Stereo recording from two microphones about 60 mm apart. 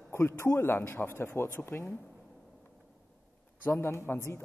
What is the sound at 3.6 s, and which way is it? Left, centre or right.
Speech, left.